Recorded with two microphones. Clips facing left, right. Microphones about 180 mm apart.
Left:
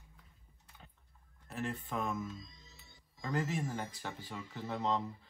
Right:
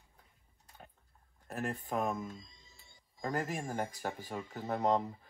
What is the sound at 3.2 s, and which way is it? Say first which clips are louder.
Speech: even; 55° right (ahead or behind).